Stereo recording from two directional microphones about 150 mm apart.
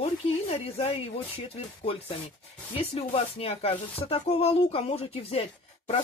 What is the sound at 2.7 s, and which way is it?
Speech, 40° left (ahead or behind).